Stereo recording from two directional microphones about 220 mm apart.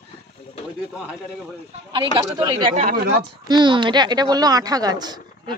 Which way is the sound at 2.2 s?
20° right (ahead or behind).